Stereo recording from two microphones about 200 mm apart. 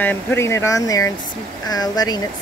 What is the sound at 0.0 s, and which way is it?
Speech, 10° left (ahead or behind).